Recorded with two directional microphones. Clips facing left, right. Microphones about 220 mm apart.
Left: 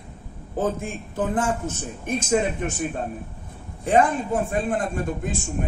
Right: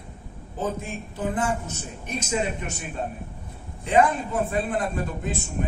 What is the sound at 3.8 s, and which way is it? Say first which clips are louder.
Speech: left 1 dB; 50° left (ahead or behind).